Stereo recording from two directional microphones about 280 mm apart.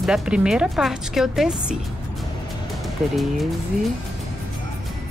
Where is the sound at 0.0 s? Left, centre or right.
Centre.